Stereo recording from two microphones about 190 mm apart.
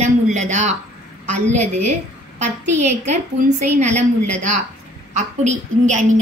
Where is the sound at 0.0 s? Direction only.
40° right (ahead or behind).